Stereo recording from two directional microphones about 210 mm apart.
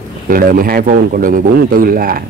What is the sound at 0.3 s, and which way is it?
A man's voice, 45° right (ahead or behind).